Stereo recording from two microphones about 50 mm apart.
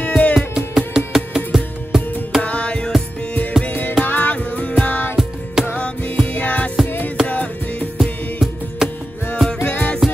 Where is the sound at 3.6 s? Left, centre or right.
Left.